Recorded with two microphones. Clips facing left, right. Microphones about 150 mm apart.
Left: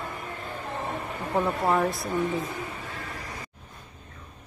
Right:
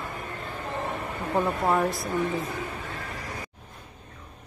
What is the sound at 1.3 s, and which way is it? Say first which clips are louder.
Speech: even; centre (ahead or behind).